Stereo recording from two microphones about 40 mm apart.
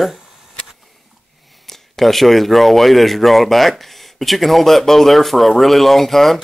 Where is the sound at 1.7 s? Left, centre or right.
Centre.